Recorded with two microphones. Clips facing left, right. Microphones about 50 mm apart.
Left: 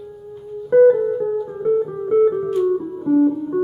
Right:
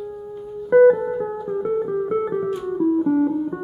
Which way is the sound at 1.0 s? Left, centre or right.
Centre.